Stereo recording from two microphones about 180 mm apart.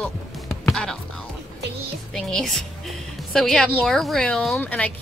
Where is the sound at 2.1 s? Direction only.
Centre (ahead or behind).